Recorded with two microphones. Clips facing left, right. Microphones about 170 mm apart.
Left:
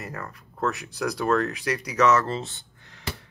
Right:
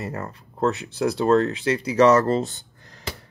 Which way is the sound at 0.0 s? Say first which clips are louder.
Right 5 dB; 30° right (ahead or behind).